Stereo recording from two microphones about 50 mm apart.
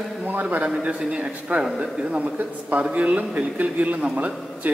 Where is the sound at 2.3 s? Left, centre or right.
Right.